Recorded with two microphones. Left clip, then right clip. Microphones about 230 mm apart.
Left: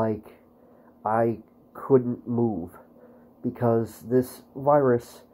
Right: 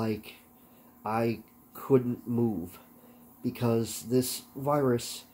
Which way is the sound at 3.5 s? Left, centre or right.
Centre.